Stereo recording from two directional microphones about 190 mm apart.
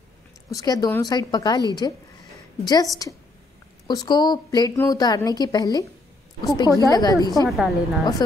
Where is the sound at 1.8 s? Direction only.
20° left (ahead or behind).